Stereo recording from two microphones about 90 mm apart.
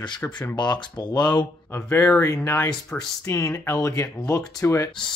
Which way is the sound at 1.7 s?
25° left (ahead or behind).